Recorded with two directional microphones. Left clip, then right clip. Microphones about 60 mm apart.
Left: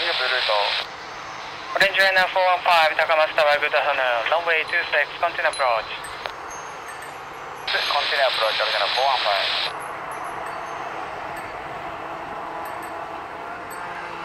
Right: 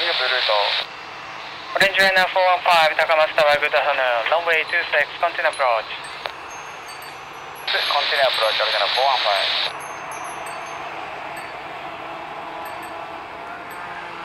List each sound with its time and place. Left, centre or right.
0.0 s a man's voice: right
7.6 s a man's voice: centre